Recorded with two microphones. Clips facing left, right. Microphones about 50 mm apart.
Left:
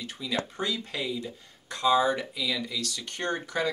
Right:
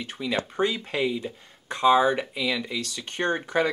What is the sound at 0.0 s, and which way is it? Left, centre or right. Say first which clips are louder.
Speech: right 4 dB; right.